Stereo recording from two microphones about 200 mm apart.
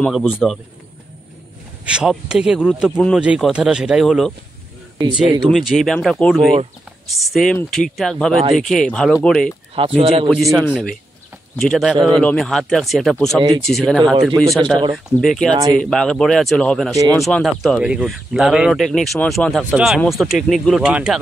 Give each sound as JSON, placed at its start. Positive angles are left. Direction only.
{"t": 0.0, "sound": "speech", "side_deg": 0}
{"t": 1.9, "sound": "speech", "side_deg": -5}
{"t": 9.8, "sound": "speech", "side_deg": -30}
{"t": 11.6, "sound": "speech", "side_deg": 0}
{"t": 15.5, "sound": "speech", "side_deg": -20}
{"t": 15.8, "sound": "speech", "side_deg": 5}